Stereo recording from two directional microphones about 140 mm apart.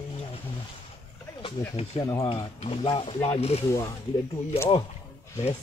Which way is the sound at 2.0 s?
20° left (ahead or behind).